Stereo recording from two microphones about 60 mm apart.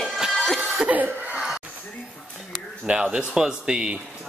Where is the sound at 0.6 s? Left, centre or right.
Centre.